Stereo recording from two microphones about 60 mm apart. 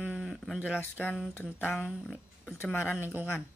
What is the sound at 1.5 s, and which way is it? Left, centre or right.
Speech, left.